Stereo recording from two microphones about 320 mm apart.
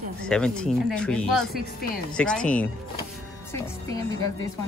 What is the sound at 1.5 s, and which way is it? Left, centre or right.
Speech, left.